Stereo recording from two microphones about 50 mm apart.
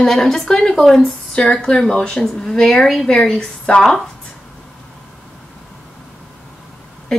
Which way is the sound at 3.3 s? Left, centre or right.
Centre.